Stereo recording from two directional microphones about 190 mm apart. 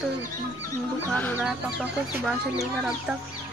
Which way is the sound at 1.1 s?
10° left (ahead or behind).